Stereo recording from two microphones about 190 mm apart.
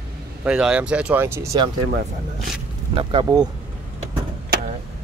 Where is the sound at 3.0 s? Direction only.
25° right (ahead or behind).